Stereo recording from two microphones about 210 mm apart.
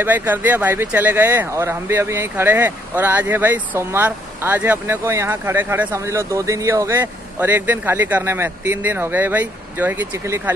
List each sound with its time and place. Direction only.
0.0 s speech: 10° right (ahead or behind)